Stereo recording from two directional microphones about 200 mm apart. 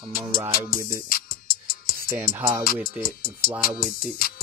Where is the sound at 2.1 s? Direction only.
10° right (ahead or behind).